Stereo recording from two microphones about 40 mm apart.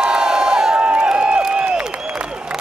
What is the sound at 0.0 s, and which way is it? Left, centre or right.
Crowd, centre.